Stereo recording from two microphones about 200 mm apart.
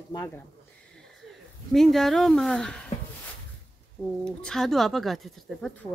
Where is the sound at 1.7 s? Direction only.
Centre (ahead or behind).